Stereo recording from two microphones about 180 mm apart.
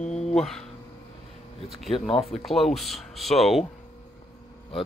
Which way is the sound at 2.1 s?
30° left (ahead or behind).